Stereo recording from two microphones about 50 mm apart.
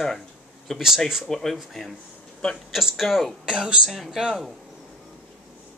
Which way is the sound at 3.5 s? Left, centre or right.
Centre.